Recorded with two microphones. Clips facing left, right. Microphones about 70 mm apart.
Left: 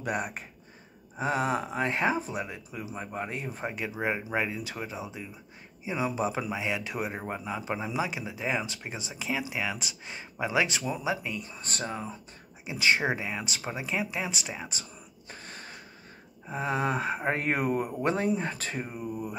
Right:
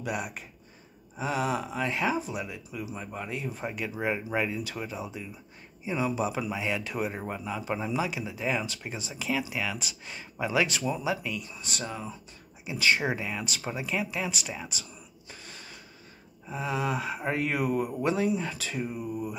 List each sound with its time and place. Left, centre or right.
0.0 s a man's voice: left
6.6 s a man's voice: centre; by 12.2 s left
12.6 s speech: left